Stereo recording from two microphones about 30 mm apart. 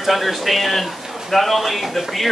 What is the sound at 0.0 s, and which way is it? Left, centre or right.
Speech, centre.